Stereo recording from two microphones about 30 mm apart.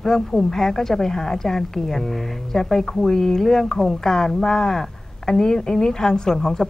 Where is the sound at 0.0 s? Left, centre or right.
Centre.